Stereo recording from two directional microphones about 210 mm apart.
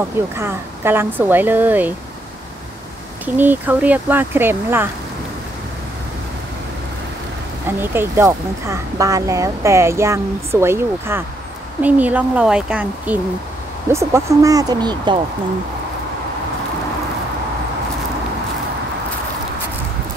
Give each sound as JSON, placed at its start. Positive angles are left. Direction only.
{"t": 0.4, "sound": "speech", "side_deg": -10}
{"t": 3.3, "sound": "speech", "side_deg": -10}
{"t": 7.6, "sound": "speech", "side_deg": -10}